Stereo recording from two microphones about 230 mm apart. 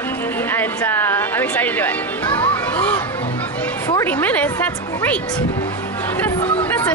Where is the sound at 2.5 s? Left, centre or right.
Centre.